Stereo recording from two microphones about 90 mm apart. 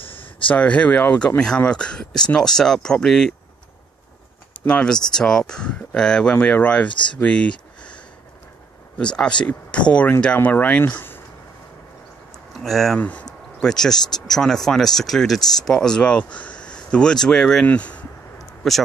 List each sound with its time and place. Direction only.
0.0 s a sound: 80° left
0.5 s speech: 15° left (ahead or behind)
4.6 s speech: 10° left (ahead or behind)
6.9 s speech: 60° left (ahead or behind)
7.2 s a sound: 15° left (ahead or behind)
8.9 s speech: 10° left (ahead or behind)
12.5 s speech: centre (ahead or behind)
12.9 s speech: 15° left (ahead or behind)
18.6 s speech: centre (ahead or behind)